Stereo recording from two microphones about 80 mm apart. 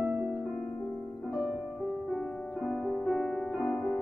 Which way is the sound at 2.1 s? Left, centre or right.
Centre.